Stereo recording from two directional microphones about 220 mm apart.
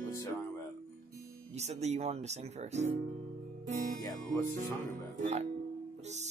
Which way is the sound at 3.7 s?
35° right (ahead or behind).